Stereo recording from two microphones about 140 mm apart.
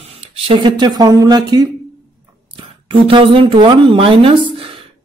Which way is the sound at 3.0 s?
40° right (ahead or behind).